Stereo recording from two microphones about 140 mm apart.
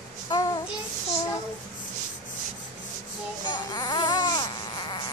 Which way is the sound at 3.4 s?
30° left (ahead or behind).